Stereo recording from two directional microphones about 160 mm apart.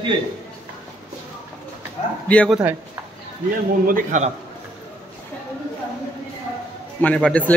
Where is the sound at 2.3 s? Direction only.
10° left (ahead or behind).